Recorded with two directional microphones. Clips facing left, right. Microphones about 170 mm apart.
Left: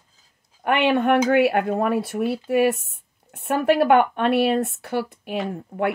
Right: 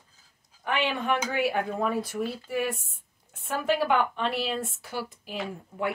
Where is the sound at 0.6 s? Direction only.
60° left (ahead or behind).